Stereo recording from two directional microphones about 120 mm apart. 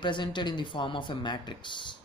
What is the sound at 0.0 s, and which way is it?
Speech, 40° left (ahead or behind).